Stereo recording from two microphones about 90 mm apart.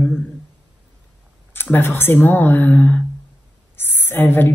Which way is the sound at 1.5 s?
25° left (ahead or behind).